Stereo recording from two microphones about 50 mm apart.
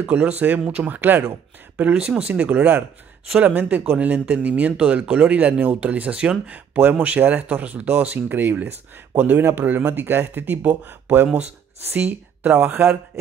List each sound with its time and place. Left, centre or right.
0.0 s speech: right
2.3 s speech: right
9.4 s speech: right
9.7 s speech: right